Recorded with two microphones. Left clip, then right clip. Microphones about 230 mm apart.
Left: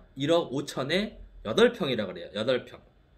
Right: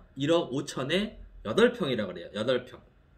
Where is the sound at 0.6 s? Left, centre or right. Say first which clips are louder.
Left 1 dB; centre.